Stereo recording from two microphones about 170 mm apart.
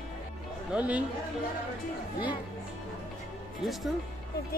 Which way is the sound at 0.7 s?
10° right (ahead or behind).